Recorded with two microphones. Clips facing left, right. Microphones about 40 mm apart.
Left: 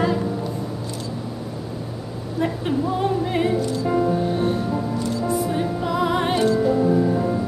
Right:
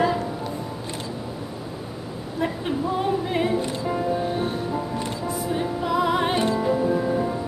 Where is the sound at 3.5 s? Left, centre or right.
Right.